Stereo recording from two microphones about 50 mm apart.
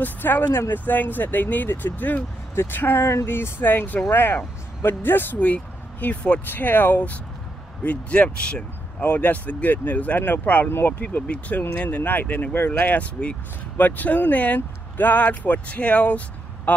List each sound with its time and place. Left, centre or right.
0.0 s speech: left
2.5 s speech: left
5.4 s speech: left
6.5 s speech: left; by 8.6 s centre
9.0 s speech: left
11.0 s speech: left